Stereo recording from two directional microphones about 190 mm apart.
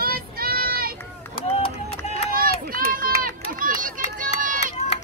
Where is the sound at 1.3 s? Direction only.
30° left (ahead or behind).